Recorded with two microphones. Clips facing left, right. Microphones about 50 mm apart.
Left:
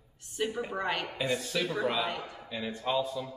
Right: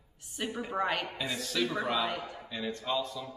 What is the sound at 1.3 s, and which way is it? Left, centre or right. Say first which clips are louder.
A man's voice: even; centre.